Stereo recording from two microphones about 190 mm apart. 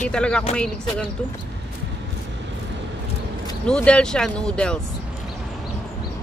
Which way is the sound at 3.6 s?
5° left (ahead or behind).